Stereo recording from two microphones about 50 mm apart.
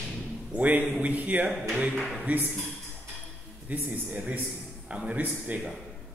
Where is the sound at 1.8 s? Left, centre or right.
Right.